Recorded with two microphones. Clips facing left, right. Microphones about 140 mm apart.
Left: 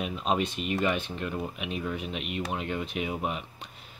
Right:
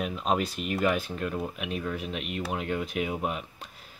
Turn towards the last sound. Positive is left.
turn(degrees=0)  # may be behind; listen again after turning